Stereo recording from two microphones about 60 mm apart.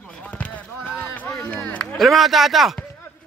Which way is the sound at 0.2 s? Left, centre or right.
Left.